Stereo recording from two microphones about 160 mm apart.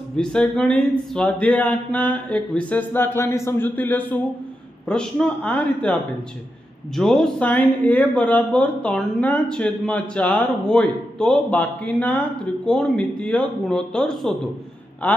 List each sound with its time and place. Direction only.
0.2 s speech: 5° left (ahead or behind)
7.0 s speech: 5° left (ahead or behind)